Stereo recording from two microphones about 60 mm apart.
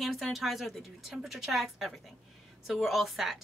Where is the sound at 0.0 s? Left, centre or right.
Centre.